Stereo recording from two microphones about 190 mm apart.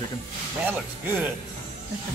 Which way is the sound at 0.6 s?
10° right (ahead or behind).